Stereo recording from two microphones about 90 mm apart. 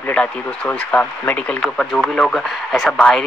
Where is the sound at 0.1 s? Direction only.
15° left (ahead or behind).